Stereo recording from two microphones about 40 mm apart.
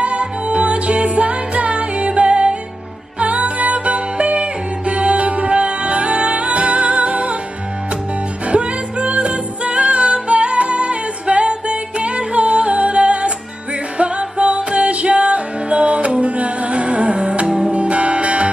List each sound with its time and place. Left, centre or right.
0.0 s music: right
8.5 s music: right